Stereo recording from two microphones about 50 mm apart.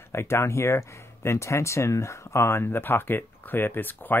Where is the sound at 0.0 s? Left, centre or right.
Left.